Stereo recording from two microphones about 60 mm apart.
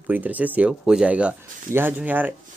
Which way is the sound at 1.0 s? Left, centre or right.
Right.